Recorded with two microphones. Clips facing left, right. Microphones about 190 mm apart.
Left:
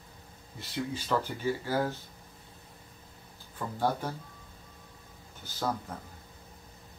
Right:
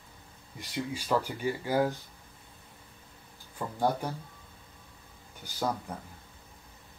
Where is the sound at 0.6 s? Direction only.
10° right (ahead or behind).